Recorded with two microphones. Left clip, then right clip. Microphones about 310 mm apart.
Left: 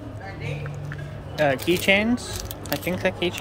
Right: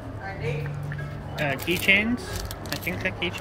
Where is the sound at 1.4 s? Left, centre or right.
Centre.